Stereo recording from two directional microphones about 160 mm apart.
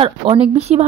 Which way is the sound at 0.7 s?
45° right (ahead or behind).